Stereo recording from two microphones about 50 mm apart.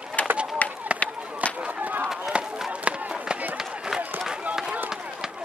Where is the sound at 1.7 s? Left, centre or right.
Right.